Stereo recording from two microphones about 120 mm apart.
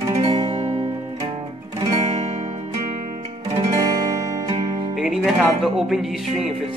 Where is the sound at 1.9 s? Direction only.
70° right (ahead or behind).